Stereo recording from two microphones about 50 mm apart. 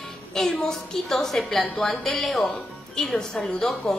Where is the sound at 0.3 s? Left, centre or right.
Centre.